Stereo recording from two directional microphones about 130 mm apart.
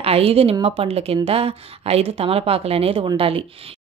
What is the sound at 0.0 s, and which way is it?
A woman's voice, 50° right (ahead or behind).